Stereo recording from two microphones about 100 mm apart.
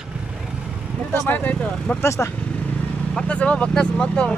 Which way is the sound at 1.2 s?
20° left (ahead or behind).